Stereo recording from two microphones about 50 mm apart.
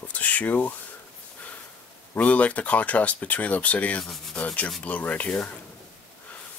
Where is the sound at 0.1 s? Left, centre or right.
Left.